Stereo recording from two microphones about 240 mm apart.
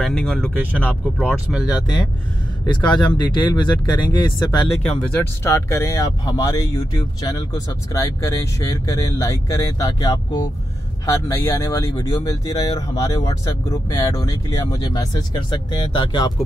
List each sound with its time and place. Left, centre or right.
0.0 s speech: centre
2.6 s speech: centre